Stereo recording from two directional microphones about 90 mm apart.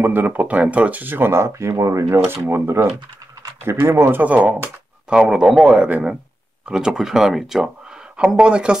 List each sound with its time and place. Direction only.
0.0 s a man's voice: 20° right (ahead or behind)